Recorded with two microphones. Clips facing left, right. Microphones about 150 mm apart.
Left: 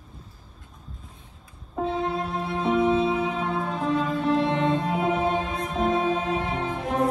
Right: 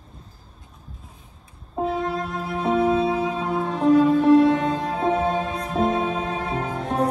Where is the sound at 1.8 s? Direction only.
25° left (ahead or behind).